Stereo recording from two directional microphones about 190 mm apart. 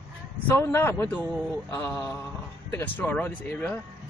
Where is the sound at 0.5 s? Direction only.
15° left (ahead or behind).